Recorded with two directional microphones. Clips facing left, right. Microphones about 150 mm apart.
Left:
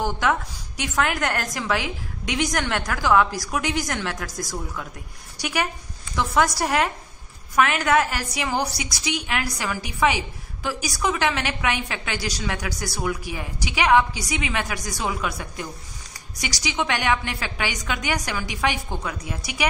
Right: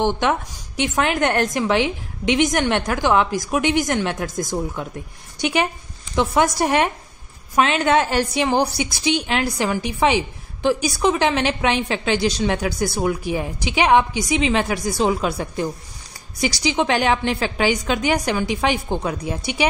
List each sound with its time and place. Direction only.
0.0 s a woman's voice: 25° right (ahead or behind)